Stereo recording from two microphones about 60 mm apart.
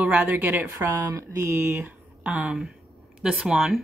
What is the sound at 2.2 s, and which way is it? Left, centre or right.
Speech, right.